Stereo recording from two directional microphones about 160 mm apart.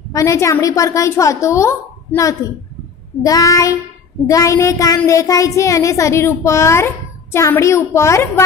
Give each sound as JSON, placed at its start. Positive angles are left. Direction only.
{"t": 0.1, "sound": "a woman's voice", "side_deg": 20}